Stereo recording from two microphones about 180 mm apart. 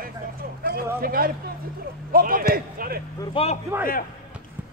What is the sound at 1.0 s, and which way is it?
A man's voice, 55° right (ahead or behind).